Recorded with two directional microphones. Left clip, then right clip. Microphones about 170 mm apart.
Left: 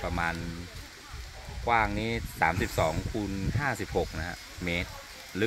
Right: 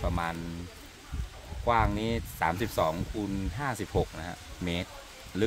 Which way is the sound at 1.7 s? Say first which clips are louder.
Even; 90° right.